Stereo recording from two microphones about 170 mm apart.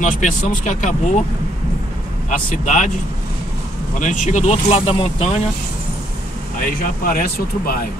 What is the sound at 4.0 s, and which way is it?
Speech, 45° left (ahead or behind).